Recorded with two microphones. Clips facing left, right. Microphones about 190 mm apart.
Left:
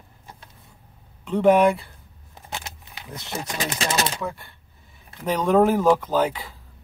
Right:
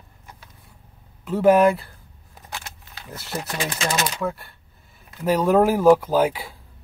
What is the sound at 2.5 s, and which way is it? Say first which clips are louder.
Keys jangling: left 2 dB; 20° left (ahead or behind).